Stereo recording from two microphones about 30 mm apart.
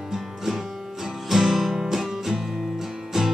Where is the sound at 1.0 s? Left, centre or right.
Centre.